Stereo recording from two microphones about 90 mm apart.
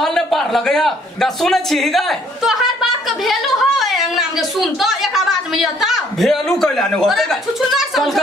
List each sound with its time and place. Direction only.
0.0 s a man's voice: centre (ahead or behind)